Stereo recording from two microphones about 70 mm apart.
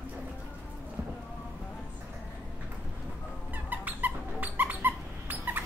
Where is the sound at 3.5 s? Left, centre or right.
Right.